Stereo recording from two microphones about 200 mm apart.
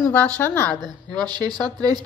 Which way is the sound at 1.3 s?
20° right (ahead or behind).